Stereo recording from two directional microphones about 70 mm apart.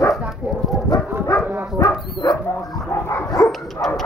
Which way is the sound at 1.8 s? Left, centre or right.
Left.